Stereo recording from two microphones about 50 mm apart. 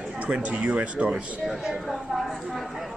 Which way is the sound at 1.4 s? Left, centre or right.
Centre.